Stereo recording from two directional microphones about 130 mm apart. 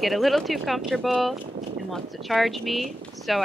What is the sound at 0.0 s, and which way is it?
Speech, centre (ahead or behind).